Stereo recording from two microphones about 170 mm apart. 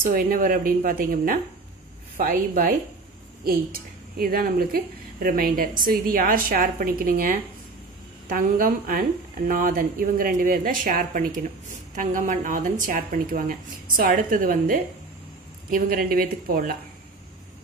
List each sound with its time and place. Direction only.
0.1 s a woman's voice: 55° right (ahead or behind)